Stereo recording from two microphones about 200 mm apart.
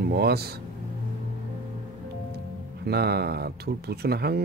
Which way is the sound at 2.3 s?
55° right (ahead or behind).